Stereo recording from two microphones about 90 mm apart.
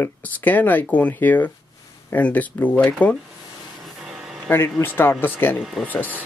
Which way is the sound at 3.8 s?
5° right (ahead or behind).